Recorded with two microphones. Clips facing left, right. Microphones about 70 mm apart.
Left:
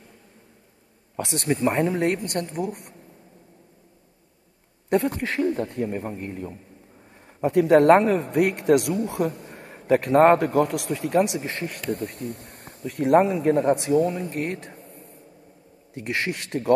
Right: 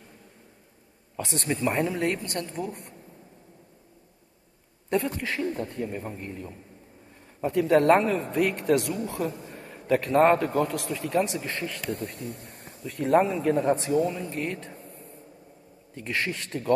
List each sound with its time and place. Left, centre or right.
1.1 s a man's voice: left
4.8 s a man's voice: left
11.4 s speech: left
11.9 s a man's voice: left
14.8 s a sound: left
15.9 s a man's voice: left